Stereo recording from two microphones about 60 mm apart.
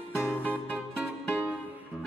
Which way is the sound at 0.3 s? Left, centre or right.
Left.